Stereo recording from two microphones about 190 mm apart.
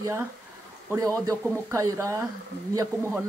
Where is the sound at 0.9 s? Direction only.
15° right (ahead or behind).